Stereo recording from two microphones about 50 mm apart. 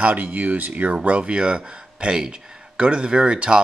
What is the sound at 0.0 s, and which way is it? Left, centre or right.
Speech, right.